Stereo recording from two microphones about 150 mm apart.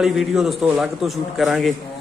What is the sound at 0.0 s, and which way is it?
Speech, centre (ahead or behind).